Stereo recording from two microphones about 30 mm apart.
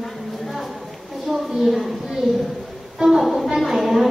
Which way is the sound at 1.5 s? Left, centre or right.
Centre.